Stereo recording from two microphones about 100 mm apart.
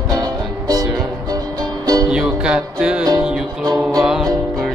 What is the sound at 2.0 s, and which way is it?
Music, 10° right (ahead or behind).